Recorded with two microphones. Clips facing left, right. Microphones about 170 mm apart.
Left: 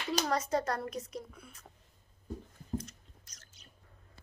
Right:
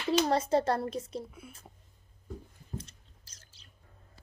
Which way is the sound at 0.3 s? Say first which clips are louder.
Right 5 dB; 30° right (ahead or behind).